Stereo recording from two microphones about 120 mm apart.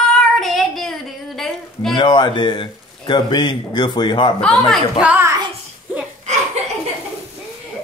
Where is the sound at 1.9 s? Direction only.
40° left (ahead or behind).